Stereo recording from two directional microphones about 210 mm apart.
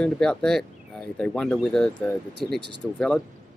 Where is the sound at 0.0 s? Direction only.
5° left (ahead or behind).